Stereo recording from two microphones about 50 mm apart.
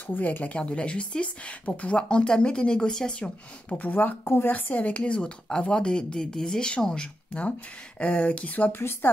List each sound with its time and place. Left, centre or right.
0.0 s speech: left; by 3.3 s centre
3.6 s speech: left
4.2 s speech: left
4.5 s speech: left; by 7.1 s centre
8.0 s speech: left
8.7 s speech: left